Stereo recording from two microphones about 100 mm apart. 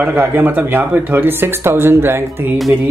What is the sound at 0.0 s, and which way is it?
Speech, 15° right (ahead or behind).